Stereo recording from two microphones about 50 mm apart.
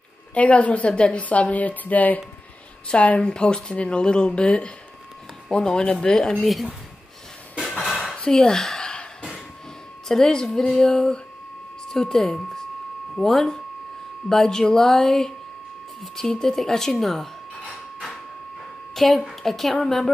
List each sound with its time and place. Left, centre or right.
0.3 s a woman's voice: left
6.4 s a woman's voice: centre
7.5 s a sound: centre
7.9 s a sound: centre
10.0 s speech: centre
18.9 s a woman's voice: centre